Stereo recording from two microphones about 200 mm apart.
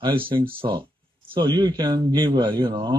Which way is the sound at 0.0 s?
25° right (ahead or behind).